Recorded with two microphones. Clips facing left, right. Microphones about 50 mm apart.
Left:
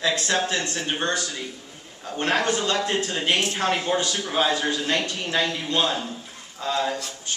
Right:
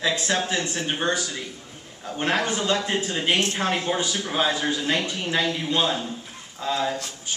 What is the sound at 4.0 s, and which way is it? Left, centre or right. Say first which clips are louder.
A man's voice: left 1 dB; centre.